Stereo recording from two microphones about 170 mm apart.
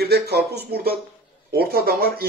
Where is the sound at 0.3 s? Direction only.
75° right (ahead or behind).